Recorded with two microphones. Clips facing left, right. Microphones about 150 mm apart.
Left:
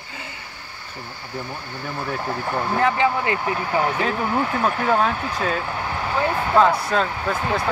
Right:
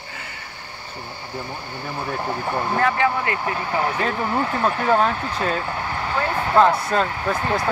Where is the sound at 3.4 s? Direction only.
Centre (ahead or behind).